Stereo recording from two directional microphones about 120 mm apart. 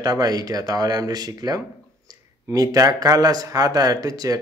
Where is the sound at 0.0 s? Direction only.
30° right (ahead or behind).